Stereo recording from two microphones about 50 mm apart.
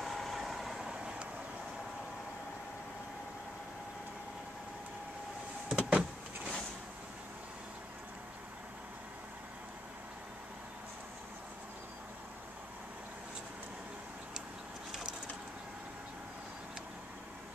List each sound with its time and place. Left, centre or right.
0.0 s vehicle: centre
0.8 s vehicle: centre
5.7 s power windows: right